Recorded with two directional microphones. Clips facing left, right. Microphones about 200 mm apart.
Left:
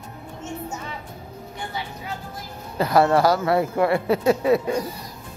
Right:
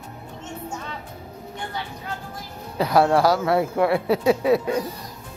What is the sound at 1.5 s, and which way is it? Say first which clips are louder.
Music: even; 5° left (ahead or behind).